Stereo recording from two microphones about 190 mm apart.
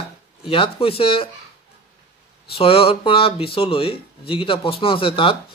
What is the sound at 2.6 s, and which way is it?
Speech, 30° left (ahead or behind).